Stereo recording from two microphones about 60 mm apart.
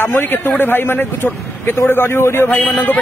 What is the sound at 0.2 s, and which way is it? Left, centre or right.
A man's voice, left.